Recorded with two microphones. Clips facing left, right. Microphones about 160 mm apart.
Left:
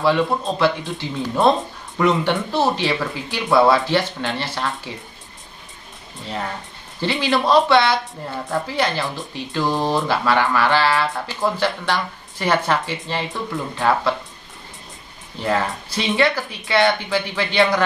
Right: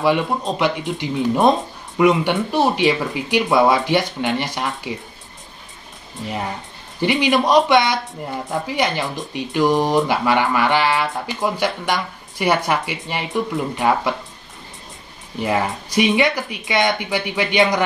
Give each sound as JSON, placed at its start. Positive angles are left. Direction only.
{"t": 0.0, "sound": "speech", "side_deg": -15}
{"t": 6.2, "sound": "speech", "side_deg": -15}
{"t": 15.3, "sound": "speech", "side_deg": -15}